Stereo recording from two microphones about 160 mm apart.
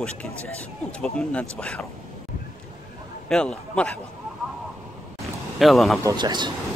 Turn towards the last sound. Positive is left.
turn(degrees=-30)  # may be behind; listen again after turning